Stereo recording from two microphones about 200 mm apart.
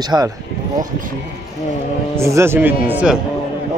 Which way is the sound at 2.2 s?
15° right (ahead or behind).